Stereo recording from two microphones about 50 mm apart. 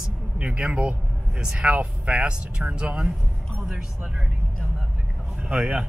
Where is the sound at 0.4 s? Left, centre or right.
Right.